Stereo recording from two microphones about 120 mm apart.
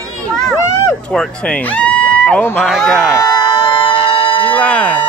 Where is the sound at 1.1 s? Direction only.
5° left (ahead or behind).